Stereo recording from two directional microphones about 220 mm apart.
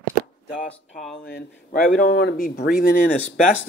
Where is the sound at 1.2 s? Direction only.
45° left (ahead or behind).